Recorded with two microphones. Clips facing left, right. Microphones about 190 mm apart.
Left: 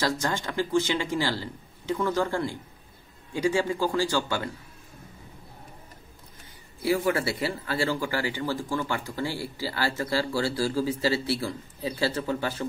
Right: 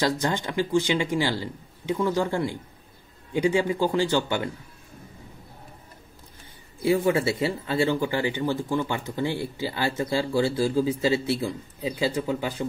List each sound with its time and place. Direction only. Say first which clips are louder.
0.0 s speech: right 3 dB; 20° right (ahead or behind)
6.8 s speech: right 3 dB; 20° right (ahead or behind)